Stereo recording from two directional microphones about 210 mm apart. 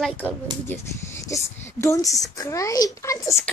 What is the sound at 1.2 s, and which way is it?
A woman's voice, 15° left (ahead or behind).